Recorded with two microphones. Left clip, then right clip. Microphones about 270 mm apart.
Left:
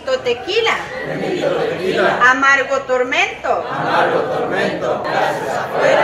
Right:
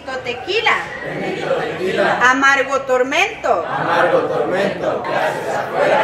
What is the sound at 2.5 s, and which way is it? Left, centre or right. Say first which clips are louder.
Speech: left 1 dB; right.